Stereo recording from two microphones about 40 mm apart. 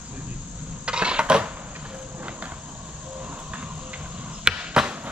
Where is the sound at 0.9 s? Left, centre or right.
Right.